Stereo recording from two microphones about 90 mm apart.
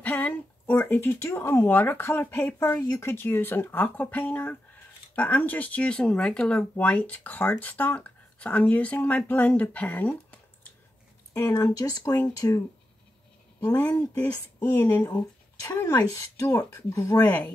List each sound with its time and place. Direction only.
0.0 s speech: 20° left (ahead or behind)
11.3 s speech: 40° left (ahead or behind)
13.6 s speech: 15° left (ahead or behind)
15.6 s speech: 35° left (ahead or behind)
17.2 s speech: 20° left (ahead or behind)